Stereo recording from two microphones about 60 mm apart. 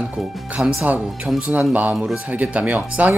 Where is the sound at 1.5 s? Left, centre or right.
Right.